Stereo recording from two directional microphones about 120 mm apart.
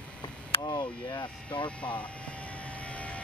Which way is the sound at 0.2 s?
35° left (ahead or behind).